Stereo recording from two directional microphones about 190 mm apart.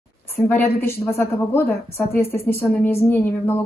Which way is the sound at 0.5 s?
10° left (ahead or behind).